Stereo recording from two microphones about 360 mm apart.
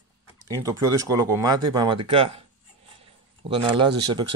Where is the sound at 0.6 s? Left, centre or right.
Centre.